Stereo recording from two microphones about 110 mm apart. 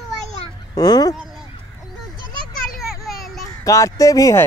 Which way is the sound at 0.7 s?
40° left (ahead or behind).